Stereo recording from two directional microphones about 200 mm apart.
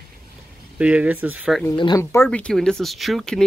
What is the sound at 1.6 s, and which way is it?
Speech, 20° left (ahead or behind).